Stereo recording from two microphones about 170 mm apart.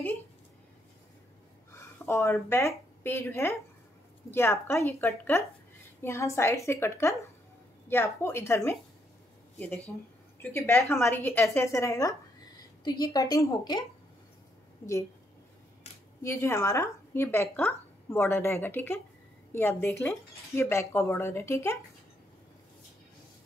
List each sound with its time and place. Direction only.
1.7 s a sound: 15° left (ahead or behind)
2.5 s speech: 15° left (ahead or behind)
10.4 s a woman's voice: 15° left (ahead or behind)
16.2 s speech: 15° left (ahead or behind)